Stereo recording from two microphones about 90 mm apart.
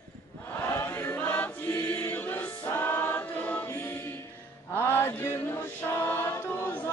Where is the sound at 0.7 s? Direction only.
25° left (ahead or behind).